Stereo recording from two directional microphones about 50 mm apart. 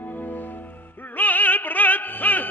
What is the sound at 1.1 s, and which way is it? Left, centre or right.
Music, left.